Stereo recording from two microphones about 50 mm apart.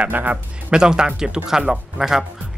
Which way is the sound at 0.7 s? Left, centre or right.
Centre.